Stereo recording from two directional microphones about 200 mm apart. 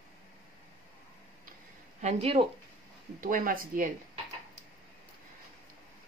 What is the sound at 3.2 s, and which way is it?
Speech, 45° right (ahead or behind).